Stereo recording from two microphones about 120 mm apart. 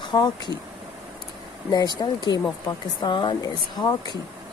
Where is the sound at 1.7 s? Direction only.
35° left (ahead or behind).